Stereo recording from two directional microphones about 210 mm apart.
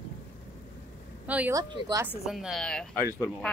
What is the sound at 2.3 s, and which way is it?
Speech, centre (ahead or behind).